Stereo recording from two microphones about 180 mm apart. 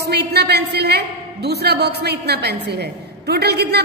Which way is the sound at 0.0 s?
65° right (ahead or behind).